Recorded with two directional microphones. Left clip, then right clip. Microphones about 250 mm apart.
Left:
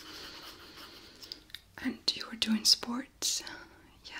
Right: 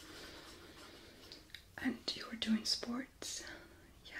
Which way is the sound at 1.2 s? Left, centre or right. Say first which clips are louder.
Left 10 dB; centre.